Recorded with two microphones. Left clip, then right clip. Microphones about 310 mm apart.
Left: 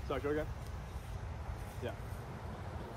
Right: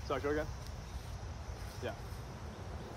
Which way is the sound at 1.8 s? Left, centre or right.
Right.